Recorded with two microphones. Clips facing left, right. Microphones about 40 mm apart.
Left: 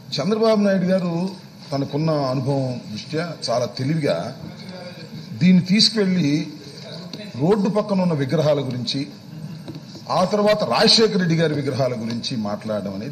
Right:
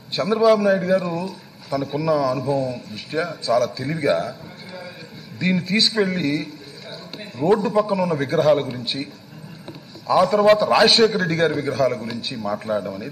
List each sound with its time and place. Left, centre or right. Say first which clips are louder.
0.1 s a man's voice: right 2 dB; centre
9.7 s vehicle: right 4 dB; centre
10.2 s a man's voice: right 2 dB; centre